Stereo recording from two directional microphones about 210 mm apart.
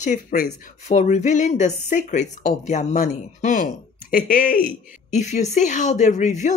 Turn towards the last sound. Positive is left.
turn(degrees=35)  # may be behind; listen again after turning